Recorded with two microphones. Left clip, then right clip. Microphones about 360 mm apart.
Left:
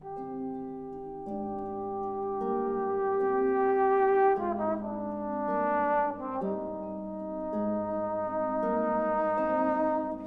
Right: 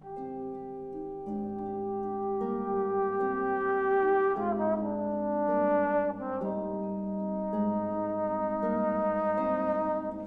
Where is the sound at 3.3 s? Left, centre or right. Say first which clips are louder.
Left 3 dB; left.